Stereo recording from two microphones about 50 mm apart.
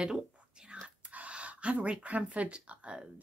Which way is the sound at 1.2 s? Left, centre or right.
Right.